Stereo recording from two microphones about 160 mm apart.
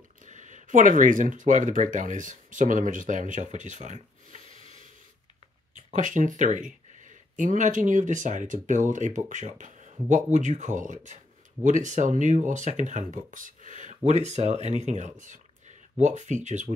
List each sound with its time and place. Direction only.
0.3 s speech: 50° right (ahead or behind)
5.9 s speech: 50° right (ahead or behind)